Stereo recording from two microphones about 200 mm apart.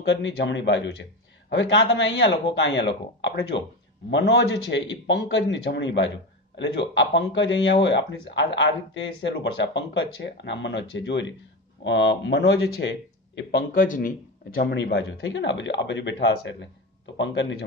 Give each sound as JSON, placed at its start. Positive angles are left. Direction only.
{"t": 0.0, "sound": "speech", "side_deg": 60}